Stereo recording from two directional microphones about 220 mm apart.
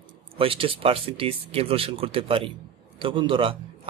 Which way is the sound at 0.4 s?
25° right (ahead or behind).